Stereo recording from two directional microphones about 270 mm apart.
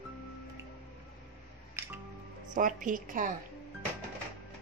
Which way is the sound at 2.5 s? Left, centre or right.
Right.